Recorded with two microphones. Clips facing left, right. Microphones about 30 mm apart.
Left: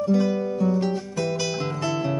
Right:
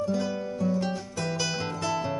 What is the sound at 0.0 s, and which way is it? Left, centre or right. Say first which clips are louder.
Music: left 7 dB; centre.